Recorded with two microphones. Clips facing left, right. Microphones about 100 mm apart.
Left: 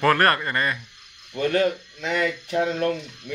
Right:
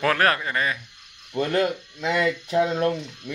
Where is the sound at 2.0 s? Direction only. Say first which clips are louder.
Right 2 dB; 35° right (ahead or behind).